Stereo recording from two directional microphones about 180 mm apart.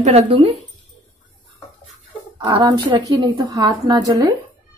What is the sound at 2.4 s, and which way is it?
A woman's voice, 30° right (ahead or behind).